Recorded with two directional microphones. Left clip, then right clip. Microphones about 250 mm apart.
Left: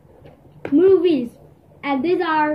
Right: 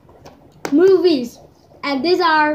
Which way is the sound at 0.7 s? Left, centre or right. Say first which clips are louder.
Right 2 dB; centre.